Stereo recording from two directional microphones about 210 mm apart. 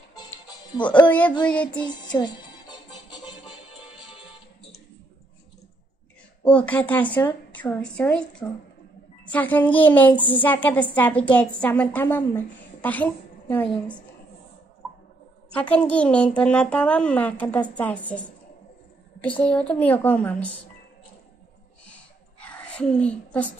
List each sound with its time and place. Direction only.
0.7 s speech: 20° left (ahead or behind)
2.1 s music: 20° left (ahead or behind)
6.4 s a woman's voice: 5° left (ahead or behind)
15.5 s a woman's voice: 5° left (ahead or behind)
19.4 s a woman's voice: 5° left (ahead or behind)
22.4 s whispering: 5° left (ahead or behind)